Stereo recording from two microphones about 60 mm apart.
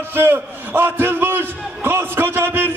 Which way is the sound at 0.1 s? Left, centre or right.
Right.